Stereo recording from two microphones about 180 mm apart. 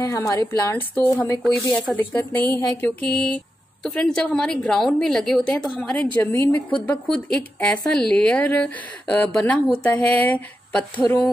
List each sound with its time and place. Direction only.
0.0 s a woman's voice: 20° left (ahead or behind)
11.0 s speech: 20° left (ahead or behind)